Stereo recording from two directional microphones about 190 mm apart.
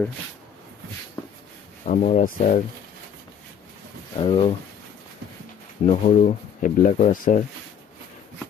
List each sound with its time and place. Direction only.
1.9 s speech: 40° left (ahead or behind)
4.2 s speech: 30° left (ahead or behind)
5.9 s speech: 40° left (ahead or behind)